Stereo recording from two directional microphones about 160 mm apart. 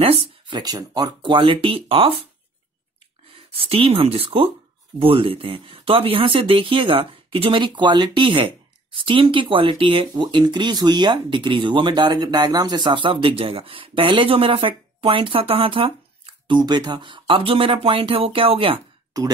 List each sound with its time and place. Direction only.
0.0 s speech: 35° right (ahead or behind)
3.3 s speech: 35° right (ahead or behind)
19.1 s speech: 25° right (ahead or behind)